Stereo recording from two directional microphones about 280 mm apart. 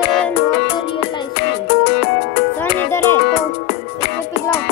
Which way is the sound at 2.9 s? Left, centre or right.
Centre.